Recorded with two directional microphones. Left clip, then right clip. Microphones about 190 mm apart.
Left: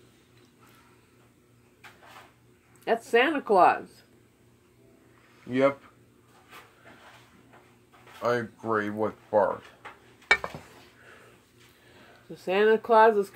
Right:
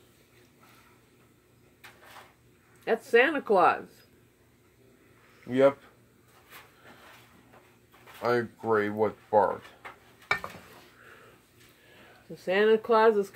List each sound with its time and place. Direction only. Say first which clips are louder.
2.8 s speech: even; 15° left (ahead or behind)
5.5 s speech: right 2 dB; 30° right (ahead or behind)
8.2 s speech: even; 30° right (ahead or behind)
10.3 s a sound: left 6 dB; 50° left (ahead or behind)
12.4 s speech: left 1 dB; 15° left (ahead or behind)